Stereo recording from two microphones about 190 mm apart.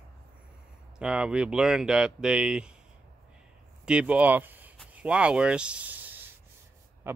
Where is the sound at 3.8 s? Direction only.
5° right (ahead or behind).